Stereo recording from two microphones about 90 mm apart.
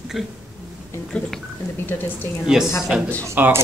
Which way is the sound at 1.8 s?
25° left (ahead or behind).